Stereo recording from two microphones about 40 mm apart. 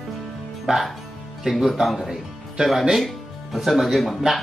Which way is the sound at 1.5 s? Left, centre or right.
Centre.